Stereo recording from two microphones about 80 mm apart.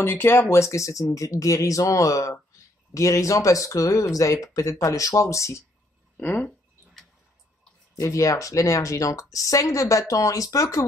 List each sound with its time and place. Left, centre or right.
0.0 s speech: left
6.1 s speech: centre
7.9 s speech: left